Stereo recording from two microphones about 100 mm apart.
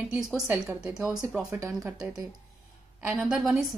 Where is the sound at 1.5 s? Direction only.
30° right (ahead or behind).